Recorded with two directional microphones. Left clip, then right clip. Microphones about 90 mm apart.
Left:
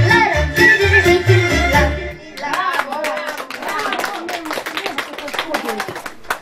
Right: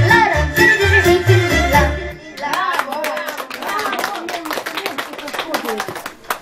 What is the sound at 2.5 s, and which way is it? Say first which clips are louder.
Clapping: even; 25° right (ahead or behind).